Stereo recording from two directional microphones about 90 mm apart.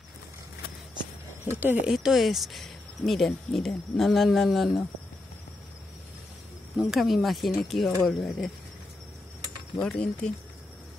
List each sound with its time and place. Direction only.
1.5 s speech: 20° right (ahead or behind)
1.9 s speech: 5° right (ahead or behind)
6.8 s speech: centre (ahead or behind)
9.8 s speech: 10° left (ahead or behind)